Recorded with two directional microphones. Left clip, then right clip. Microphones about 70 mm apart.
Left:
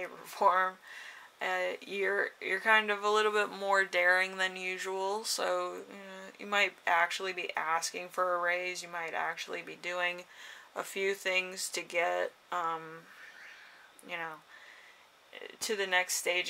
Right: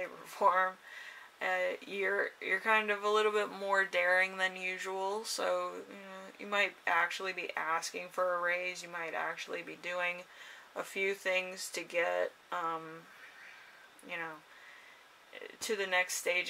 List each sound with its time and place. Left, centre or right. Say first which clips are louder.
0.0 s a sound: left 2 dB; left
1.4 s speech: even; left
14.0 s speech: left 2 dB; left
15.6 s speech: left 2 dB; left